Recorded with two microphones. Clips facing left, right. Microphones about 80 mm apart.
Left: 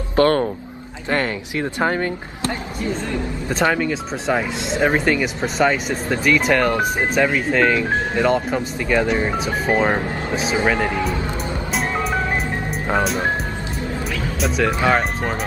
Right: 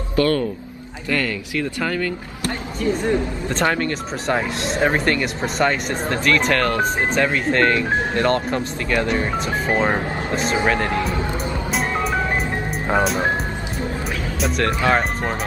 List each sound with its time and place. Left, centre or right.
0.1 s speech: left
1.1 s speech: left
3.4 s speech: centre
11.7 s music: centre
12.8 s speech: centre
14.4 s speech: centre